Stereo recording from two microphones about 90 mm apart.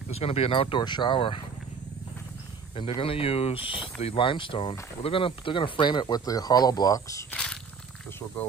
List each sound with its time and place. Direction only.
0.2 s speech: 90° left; by 1.4 s 70° left (ahead or behind)
2.7 s speech: 90° left; by 7.0 s 45° left (ahead or behind)